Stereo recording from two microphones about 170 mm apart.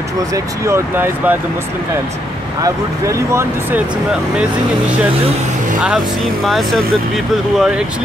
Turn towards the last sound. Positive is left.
turn(degrees=-5)  # may be behind; listen again after turning